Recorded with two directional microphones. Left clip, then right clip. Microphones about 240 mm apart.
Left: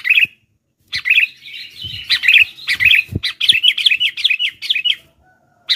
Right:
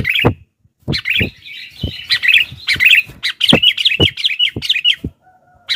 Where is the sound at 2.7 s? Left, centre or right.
Centre.